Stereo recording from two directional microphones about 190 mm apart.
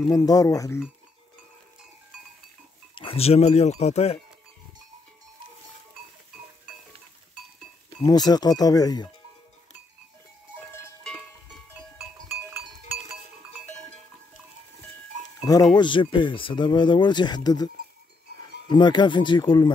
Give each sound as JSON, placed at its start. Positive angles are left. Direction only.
{"t": 0.1, "sound": "speech", "side_deg": 20}
{"t": 2.9, "sound": "speech", "side_deg": 25}
{"t": 8.0, "sound": "speech", "side_deg": 20}
{"t": 10.7, "sound": "goat", "side_deg": 10}
{"t": 12.4, "sound": "goat", "side_deg": -10}
{"t": 15.7, "sound": "speech", "side_deg": 25}
{"t": 18.7, "sound": "speech", "side_deg": 25}